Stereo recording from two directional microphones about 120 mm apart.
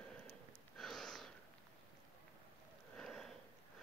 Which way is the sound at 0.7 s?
Centre (ahead or behind).